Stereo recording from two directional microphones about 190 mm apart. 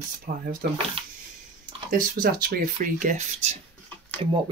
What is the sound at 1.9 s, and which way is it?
Speech, 45° right (ahead or behind).